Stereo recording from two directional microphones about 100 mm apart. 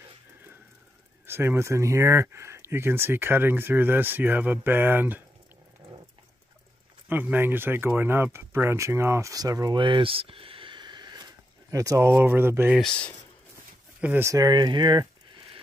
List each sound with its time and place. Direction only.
1.2 s speech: 25° right (ahead or behind)
7.1 s speech: 20° right (ahead or behind); by 9.8 s 40° right (ahead or behind)
9.8 s a sound: 55° right (ahead or behind)
11.7 s speech: 35° right (ahead or behind)
12.1 s speech: 20° right (ahead or behind)
12.8 s speech: 10° left (ahead or behind)
14.2 s speech: 40° right (ahead or behind)